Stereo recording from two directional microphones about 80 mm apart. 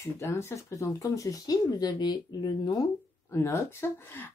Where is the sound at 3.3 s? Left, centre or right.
Left.